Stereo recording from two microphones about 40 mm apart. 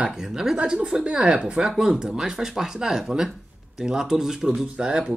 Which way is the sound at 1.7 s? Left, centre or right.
Centre.